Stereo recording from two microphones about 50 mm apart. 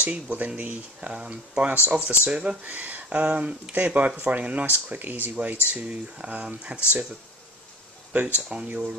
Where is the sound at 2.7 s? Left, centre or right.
Right.